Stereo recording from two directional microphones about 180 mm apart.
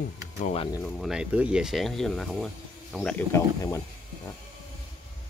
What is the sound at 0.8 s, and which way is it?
Speech, centre (ahead or behind).